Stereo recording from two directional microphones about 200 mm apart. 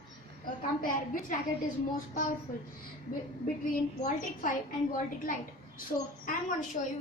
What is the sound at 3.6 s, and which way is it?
A woman's voice, 45° left (ahead or behind).